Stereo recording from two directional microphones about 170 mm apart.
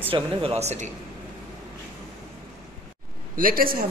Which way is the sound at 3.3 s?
55° right (ahead or behind).